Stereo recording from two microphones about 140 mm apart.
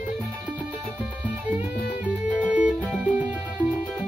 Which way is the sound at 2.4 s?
10° right (ahead or behind).